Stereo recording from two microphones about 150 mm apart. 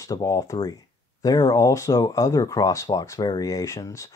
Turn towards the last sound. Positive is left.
turn(degrees=20)  # may be behind; listen again after turning